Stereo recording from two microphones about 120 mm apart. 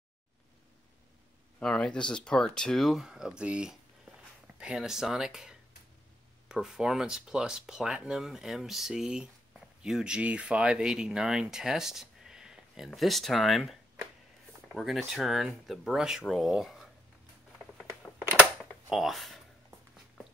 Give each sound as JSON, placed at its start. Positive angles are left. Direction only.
{"t": 1.6, "sound": "speech", "side_deg": 5}
{"t": 18.9, "sound": "speech", "side_deg": 0}